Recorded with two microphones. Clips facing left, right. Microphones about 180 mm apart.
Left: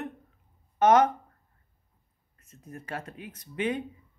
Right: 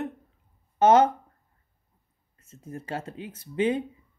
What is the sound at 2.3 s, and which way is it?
Speech, 25° right (ahead or behind).